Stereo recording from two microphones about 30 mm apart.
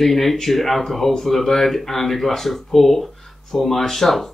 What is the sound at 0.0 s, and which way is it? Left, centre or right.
Speech, centre.